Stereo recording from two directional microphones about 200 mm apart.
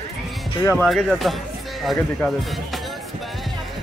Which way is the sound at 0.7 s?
5° left (ahead or behind).